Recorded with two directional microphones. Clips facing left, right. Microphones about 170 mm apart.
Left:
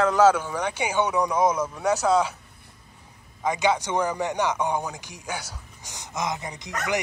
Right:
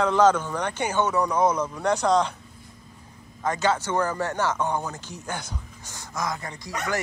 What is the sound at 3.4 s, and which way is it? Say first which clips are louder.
A man's voice: left 1 dB; 15° left (ahead or behind).